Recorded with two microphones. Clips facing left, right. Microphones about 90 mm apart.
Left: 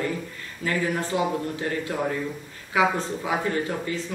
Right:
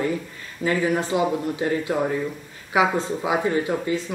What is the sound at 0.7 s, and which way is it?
Speech, 15° right (ahead or behind).